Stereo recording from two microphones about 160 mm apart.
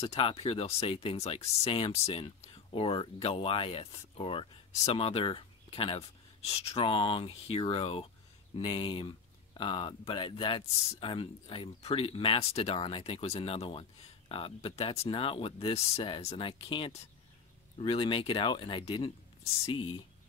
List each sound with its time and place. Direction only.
0.0 s speech: 40° left (ahead or behind)